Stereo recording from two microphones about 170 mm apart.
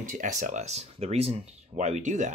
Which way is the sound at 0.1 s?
50° right (ahead or behind).